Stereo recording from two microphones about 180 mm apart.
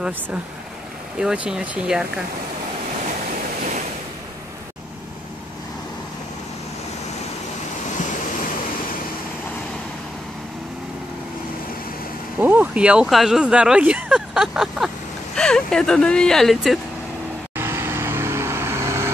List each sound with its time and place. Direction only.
1.2 s speech: 5° right (ahead or behind)
12.4 s speech: 10° right (ahead or behind)
17.6 s vehicle: 15° right (ahead or behind)